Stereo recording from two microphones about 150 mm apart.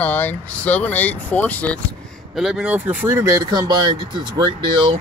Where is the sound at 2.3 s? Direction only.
5° right (ahead or behind); by 4.0 s 30° right (ahead or behind).